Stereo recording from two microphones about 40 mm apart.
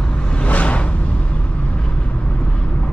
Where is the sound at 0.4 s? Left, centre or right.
Left.